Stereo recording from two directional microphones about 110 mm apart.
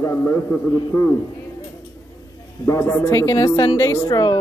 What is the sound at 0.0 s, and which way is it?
A woman's voice, 20° left (ahead or behind).